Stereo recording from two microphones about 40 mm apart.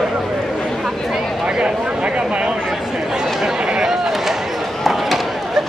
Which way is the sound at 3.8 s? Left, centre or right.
Centre.